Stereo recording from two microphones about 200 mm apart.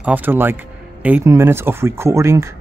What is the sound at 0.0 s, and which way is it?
Speech, 10° right (ahead or behind).